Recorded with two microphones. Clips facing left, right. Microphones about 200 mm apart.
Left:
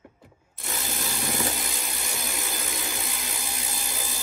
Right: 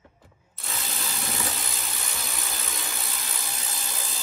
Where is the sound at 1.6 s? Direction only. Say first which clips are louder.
Left 2 dB; centre (ahead or behind).